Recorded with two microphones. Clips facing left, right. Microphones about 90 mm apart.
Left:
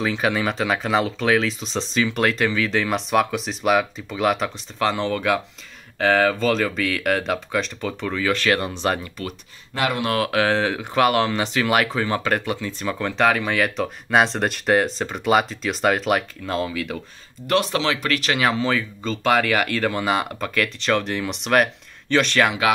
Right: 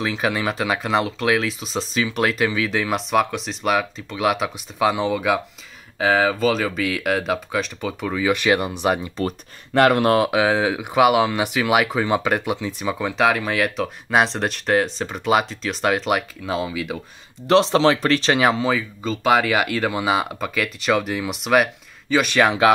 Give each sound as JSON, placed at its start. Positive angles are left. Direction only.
{"t": 0.0, "sound": "speech", "side_deg": 0}
{"t": 9.8, "sound": "speech", "side_deg": -55}
{"t": 10.1, "sound": "speech", "side_deg": -15}
{"t": 17.5, "sound": "speech", "side_deg": -25}
{"t": 18.7, "sound": "speech", "side_deg": -5}